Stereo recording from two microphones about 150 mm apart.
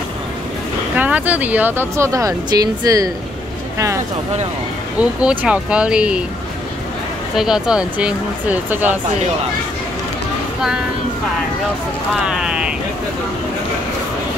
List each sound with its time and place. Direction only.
0.9 s speech: 10° right (ahead or behind)
4.9 s speech: 10° right (ahead or behind)
7.3 s speech: 5° right (ahead or behind)
12.3 s speech: 5° right (ahead or behind)